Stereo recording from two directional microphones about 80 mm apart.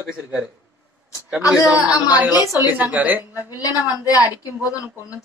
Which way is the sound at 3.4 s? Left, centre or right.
Left.